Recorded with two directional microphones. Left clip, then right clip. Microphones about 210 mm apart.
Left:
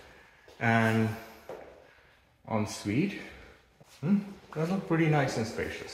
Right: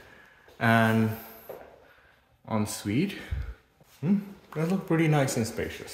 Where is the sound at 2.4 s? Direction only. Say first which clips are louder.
Right 1 dB; 35° right (ahead or behind).